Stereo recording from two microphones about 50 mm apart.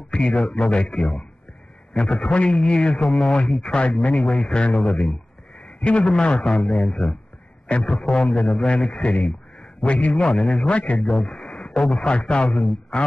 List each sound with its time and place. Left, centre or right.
0.1 s speech: centre
0.4 s a man's voice: centre
0.7 s a man's voice: centre
3.0 s a man's voice: centre
5.6 s a sound: left
6.0 s a man's voice: centre
6.4 s a man's voice: centre
10.7 s a man's voice: left
11.0 s a man's voice: centre
11.5 s radio: centre
12.0 s a man's voice: centre